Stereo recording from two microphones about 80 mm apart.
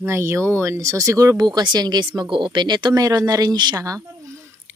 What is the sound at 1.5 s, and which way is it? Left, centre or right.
Speech, right.